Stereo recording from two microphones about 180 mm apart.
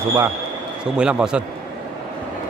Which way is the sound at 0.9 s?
5° right (ahead or behind).